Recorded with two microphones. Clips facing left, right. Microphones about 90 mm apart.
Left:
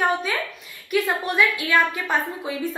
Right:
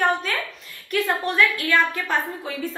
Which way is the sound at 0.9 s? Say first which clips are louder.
Even; 15° left (ahead or behind).